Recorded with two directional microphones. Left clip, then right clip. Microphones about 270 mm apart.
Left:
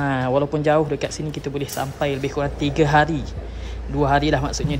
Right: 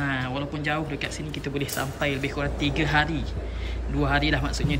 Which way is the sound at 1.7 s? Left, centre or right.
Centre.